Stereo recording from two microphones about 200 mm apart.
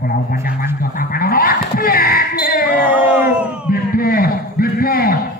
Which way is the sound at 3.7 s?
45° left (ahead or behind).